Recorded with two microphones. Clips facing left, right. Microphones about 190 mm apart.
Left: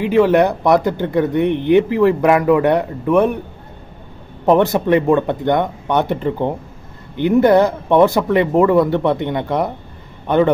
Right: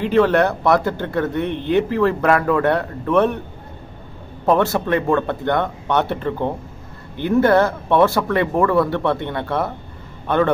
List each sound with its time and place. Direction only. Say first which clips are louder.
0.0 s speech: left 3 dB; 10° left (ahead or behind)
4.5 s a man's voice: left 4 dB; 15° left (ahead or behind)